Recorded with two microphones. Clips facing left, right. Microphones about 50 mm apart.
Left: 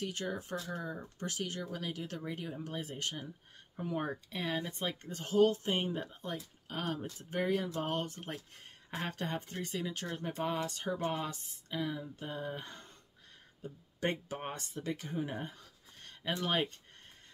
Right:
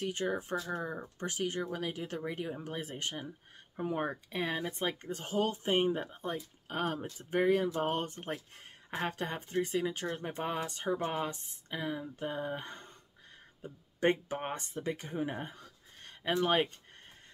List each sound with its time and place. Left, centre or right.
0.0 s speech: right
1.0 s speech: centre
8.9 s speech: centre